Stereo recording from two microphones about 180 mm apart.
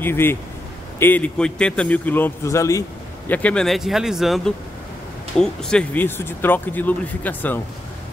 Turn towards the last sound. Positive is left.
turn(degrees=10)  # may be behind; listen again after turning